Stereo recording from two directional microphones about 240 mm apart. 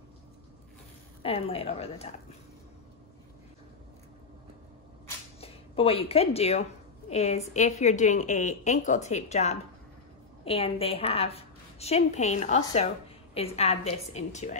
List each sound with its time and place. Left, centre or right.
1.2 s a woman's voice: left
5.4 s a woman's voice: left